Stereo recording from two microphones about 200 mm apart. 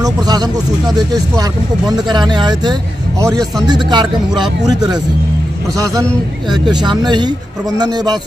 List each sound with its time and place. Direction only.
0.0 s speech: 20° right (ahead or behind)
6.5 s speech: 20° right (ahead or behind)